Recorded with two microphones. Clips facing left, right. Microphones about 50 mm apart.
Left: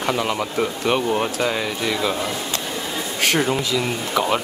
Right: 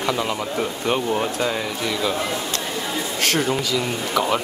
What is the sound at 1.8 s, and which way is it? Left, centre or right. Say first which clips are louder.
Speech: left 1 dB; centre.